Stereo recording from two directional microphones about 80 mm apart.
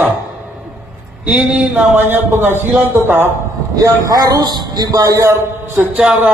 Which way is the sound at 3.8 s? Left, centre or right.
Right.